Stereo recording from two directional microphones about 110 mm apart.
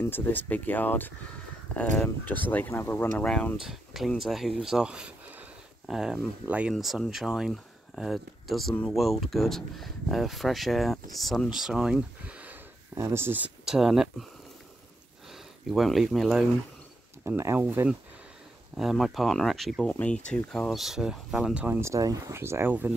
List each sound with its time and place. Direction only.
0.0 s speech: 20° left (ahead or behind)
3.6 s speech: centre (ahead or behind)
6.7 s speech: centre (ahead or behind); by 13.5 s 20° right (ahead or behind)
13.7 s speech: 5° right (ahead or behind)
15.7 s speech: centre (ahead or behind)
17.4 s speech: 20° right (ahead or behind)
18.8 s speech: centre (ahead or behind)
19.9 s speech: 15° left (ahead or behind); by 21.6 s 5° right (ahead or behind)
21.6 s speech: 25° right (ahead or behind)